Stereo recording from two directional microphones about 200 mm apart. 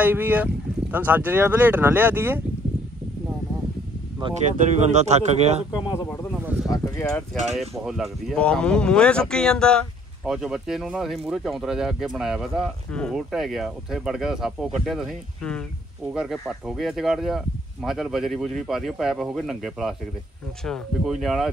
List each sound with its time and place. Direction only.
0.0 s speech: 10° right (ahead or behind)
4.4 s speech: 35° right (ahead or behind)
5.7 s speech: 20° left (ahead or behind)
6.4 s a sound: 5° right (ahead or behind)
6.7 s a sound: 15° left (ahead or behind)
7.8 s speech: centre (ahead or behind)